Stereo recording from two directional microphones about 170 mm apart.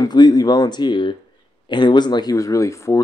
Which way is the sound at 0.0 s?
25° left (ahead or behind).